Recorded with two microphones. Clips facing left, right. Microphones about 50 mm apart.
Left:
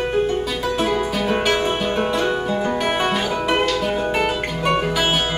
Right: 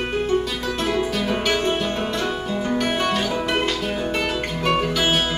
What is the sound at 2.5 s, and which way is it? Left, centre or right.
Guitar, centre.